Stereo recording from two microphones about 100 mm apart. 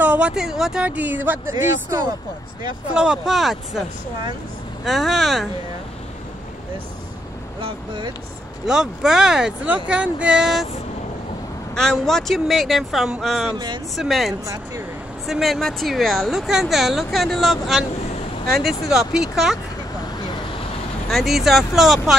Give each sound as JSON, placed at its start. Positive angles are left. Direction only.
{"t": 0.0, "sound": "speech", "side_deg": -10}
{"t": 2.9, "sound": "speech", "side_deg": -5}
{"t": 4.8, "sound": "speech", "side_deg": 0}
{"t": 7.6, "sound": "speech", "side_deg": -55}
{"t": 8.6, "sound": "speech", "side_deg": -5}
{"t": 11.7, "sound": "speech", "side_deg": 5}
{"t": 21.1, "sound": "speech", "side_deg": 0}